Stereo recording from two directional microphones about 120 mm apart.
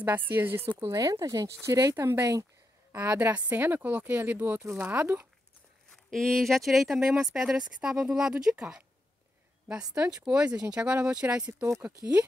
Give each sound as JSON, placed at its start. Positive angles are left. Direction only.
{"t": 0.0, "sound": "speech", "side_deg": -15}
{"t": 0.7, "sound": "speech", "side_deg": -30}
{"t": 3.2, "sound": "speech", "side_deg": -15}
{"t": 5.9, "sound": "speech", "side_deg": 0}